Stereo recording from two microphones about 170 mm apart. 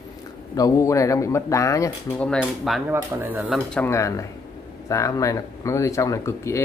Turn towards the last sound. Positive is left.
turn(degrees=15)  # may be behind; listen again after turning